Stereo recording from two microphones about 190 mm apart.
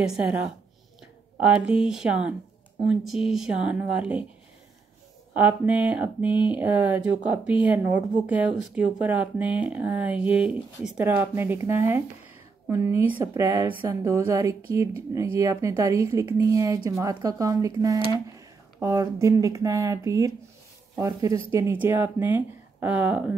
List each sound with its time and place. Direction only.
0.0 s speech: 5° right (ahead or behind)
5.3 s speech: 10° right (ahead or behind)
13.5 s speech: 25° left (ahead or behind)
13.7 s speech: 15° right (ahead or behind)